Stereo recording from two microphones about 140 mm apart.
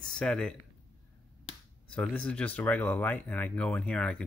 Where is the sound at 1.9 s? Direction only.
10° left (ahead or behind).